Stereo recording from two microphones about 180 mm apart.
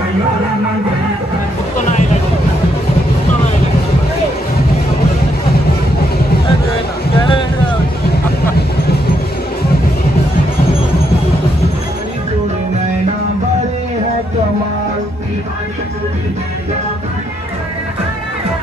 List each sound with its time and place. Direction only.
7.2 s boat: 25° left (ahead or behind)